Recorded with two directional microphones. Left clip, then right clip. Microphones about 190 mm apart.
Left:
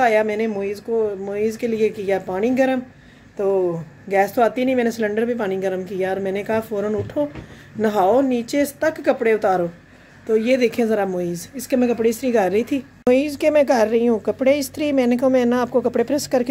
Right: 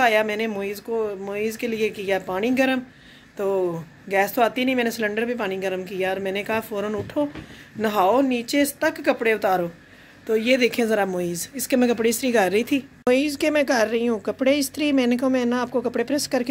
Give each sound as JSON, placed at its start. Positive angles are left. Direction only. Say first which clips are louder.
{"t": 0.0, "sound": "a woman's voice", "louder": "left 2 dB", "side_deg": 10}